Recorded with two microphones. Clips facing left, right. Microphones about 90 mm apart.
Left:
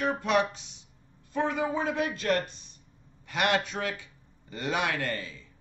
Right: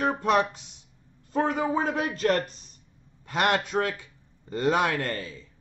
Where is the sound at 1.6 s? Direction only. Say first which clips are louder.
Right 2 dB; 40° right (ahead or behind).